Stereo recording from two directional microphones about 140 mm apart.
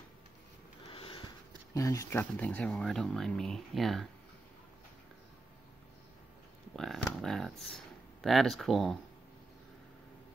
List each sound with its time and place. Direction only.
0.9 s sniff: 40° left (ahead or behind)
1.7 s speech: 20° left (ahead or behind); by 4.1 s centre (ahead or behind)
6.7 s a sound: 5° left (ahead or behind)